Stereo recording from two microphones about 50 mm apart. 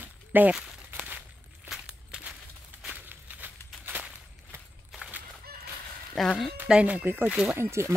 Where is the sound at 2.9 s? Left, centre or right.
Right.